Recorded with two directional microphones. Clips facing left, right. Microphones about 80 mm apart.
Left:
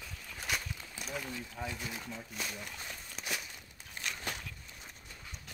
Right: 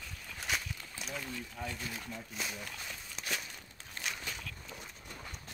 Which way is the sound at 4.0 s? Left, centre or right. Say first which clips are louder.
Even; centre.